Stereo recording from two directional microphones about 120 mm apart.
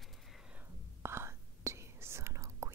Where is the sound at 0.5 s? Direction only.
20° right (ahead or behind).